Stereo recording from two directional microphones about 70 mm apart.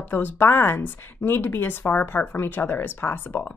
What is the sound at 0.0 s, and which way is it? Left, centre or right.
Speech, left.